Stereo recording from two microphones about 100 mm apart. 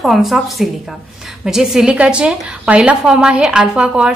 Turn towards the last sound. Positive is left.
turn(degrees=-10)  # may be behind; listen again after turning